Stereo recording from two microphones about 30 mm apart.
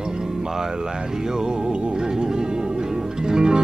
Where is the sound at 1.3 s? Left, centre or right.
Right.